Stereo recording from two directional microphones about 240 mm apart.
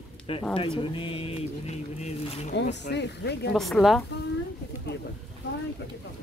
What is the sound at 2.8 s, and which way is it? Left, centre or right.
Speech, left.